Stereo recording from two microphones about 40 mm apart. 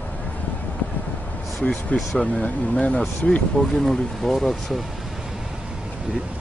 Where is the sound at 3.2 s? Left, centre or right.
Left.